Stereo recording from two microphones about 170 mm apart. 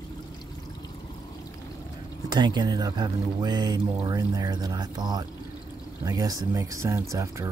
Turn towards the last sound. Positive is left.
turn(degrees=-15)  # may be behind; listen again after turning